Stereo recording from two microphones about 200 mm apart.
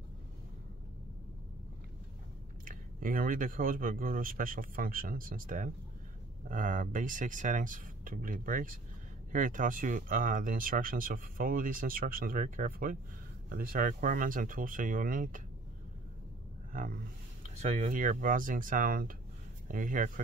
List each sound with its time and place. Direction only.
2.6 s speech: 45° right (ahead or behind)
16.7 s speech: 45° right (ahead or behind)